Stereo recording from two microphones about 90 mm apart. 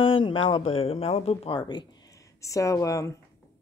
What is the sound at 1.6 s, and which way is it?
Speech, 55° left (ahead or behind).